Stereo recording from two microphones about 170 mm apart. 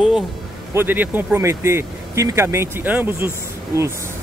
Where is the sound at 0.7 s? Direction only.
10° right (ahead or behind).